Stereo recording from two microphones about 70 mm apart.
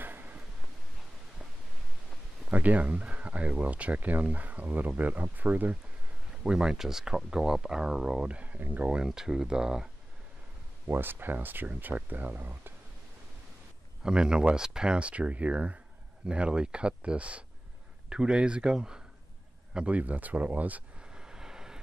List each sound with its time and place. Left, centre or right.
0.0 s a sound: right
2.5 s speech: right
6.4 s speech: centre
10.9 s speech: right
14.0 s speech: centre
21.1 s vehicle: centre